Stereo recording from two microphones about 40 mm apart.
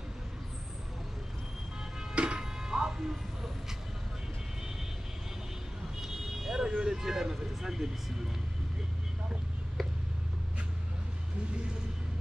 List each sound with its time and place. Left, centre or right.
2.1 s music: right
5.9 s car alarm: centre
6.8 s vehicle: centre